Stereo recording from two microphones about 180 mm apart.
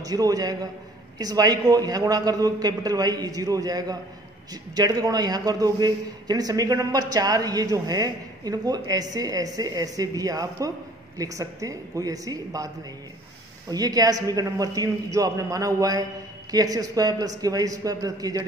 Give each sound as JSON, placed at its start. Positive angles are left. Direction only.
{"t": 0.0, "sound": "a man's voice", "side_deg": -20}
{"t": 13.7, "sound": "a man's voice", "side_deg": -20}